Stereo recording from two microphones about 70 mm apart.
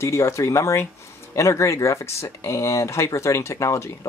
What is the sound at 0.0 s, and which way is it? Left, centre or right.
Speech, left.